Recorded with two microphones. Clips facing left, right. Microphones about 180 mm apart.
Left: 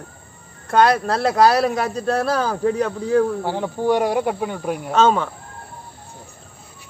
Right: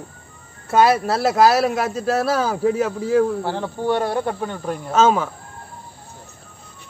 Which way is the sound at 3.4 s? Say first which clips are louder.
Left 2 dB; 10° left (ahead or behind).